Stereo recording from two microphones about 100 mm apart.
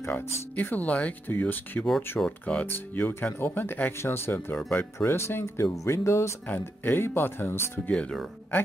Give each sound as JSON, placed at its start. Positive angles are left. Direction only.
{"t": 0.0, "sound": "speech", "side_deg": 20}
{"t": 4.6, "sound": "speech", "side_deg": 10}
{"t": 4.9, "sound": "speech", "side_deg": 25}
{"t": 7.9, "sound": "speech", "side_deg": 10}